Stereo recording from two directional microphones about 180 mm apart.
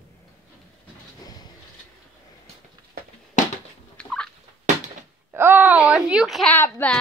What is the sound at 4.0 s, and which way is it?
Fowl, 5° left (ahead or behind).